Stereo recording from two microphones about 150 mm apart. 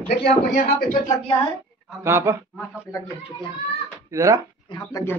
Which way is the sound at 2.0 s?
20° right (ahead or behind).